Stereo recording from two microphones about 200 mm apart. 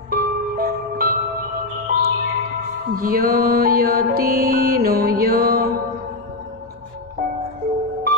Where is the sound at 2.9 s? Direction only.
45° right (ahead or behind).